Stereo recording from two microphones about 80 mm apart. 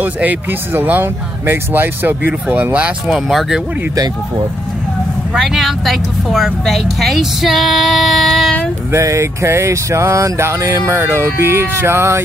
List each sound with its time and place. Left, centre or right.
0.0 s speech: right
3.3 s a woman's voice: centre
5.3 s a woman's voice: centre
8.9 s a sound: right